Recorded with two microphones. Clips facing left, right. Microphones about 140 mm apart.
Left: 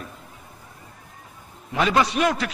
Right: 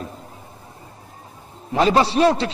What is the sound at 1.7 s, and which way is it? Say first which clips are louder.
Speech: right 4 dB; 30° right (ahead or behind).